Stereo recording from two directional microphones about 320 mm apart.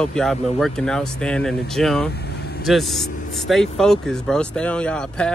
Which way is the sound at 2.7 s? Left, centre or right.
Centre.